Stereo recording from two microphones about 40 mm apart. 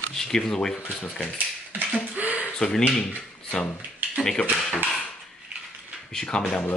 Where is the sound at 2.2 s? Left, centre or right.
Right.